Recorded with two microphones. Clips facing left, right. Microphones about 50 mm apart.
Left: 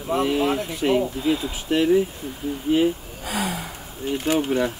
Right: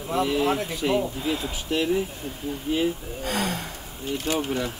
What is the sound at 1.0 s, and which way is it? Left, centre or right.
Speech, centre.